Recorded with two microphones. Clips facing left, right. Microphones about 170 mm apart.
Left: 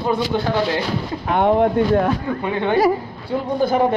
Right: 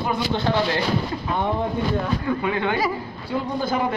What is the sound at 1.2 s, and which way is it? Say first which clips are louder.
Speech: left 12 dB; 70° left (ahead or behind).